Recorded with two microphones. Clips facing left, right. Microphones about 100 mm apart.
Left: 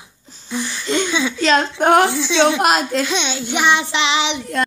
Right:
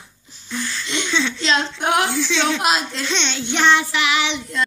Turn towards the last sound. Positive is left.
turn(degrees=20)  # may be behind; listen again after turning